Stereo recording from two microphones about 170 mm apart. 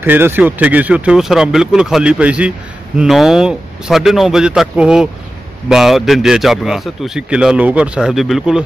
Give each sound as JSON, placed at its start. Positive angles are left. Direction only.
{"t": 0.0, "sound": "speech", "side_deg": -10}